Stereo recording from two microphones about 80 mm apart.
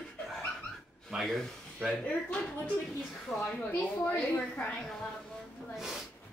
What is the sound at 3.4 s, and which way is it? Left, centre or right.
A woman's voice, centre.